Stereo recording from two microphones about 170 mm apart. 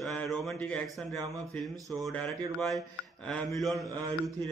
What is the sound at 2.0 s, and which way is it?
A man's voice, centre (ahead or behind).